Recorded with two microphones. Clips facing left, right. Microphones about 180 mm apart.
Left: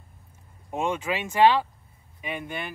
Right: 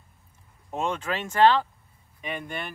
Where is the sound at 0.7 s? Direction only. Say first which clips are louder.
Left 1 dB; 10° left (ahead or behind).